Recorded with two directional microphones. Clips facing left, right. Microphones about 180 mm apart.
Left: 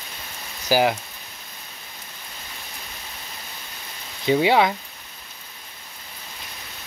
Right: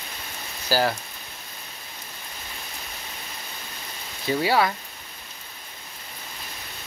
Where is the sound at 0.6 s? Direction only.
15° left (ahead or behind).